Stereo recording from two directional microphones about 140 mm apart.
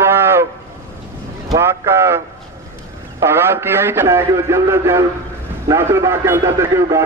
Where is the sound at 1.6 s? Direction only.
20° right (ahead or behind).